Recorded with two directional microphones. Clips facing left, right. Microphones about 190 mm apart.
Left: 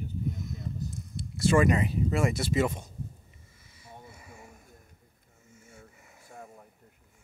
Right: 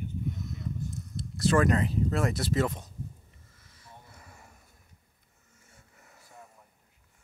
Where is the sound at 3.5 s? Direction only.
5° left (ahead or behind).